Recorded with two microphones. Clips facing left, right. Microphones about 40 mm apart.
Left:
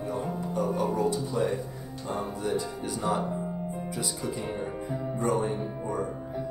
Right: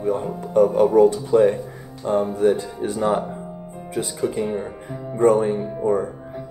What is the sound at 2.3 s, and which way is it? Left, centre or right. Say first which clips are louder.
Speech: right 11 dB; right.